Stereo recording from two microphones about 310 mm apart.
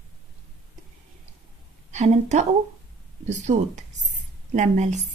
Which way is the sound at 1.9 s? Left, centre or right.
Right.